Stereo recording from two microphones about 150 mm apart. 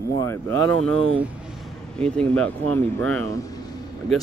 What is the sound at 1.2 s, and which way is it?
Speech, 5° right (ahead or behind).